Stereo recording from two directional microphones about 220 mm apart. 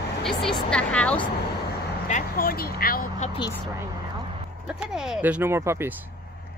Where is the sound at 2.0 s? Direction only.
35° left (ahead or behind).